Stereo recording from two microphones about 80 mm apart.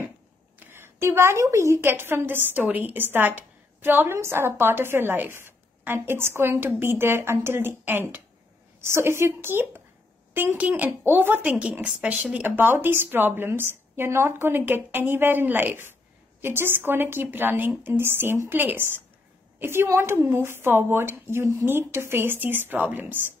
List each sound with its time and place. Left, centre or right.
0.7 s a woman's voice: right; by 12.4 s centre
12.4 s a woman's voice: right